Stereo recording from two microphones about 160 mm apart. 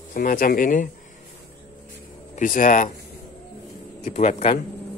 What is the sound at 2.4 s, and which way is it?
Speech, 55° left (ahead or behind).